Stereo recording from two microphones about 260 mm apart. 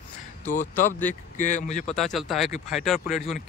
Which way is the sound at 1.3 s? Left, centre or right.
Left.